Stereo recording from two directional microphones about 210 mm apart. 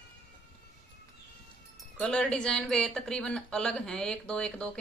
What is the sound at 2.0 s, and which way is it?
Speech, 5° left (ahead or behind).